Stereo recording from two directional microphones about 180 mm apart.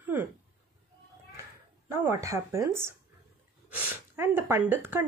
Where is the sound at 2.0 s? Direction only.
15° right (ahead or behind).